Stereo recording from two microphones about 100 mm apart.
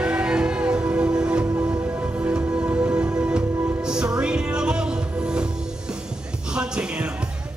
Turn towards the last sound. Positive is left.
turn(degrees=-10)  # may be behind; listen again after turning